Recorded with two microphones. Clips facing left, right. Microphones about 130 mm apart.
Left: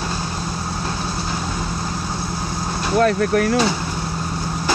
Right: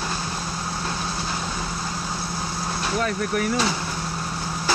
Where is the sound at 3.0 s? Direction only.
70° left (ahead or behind).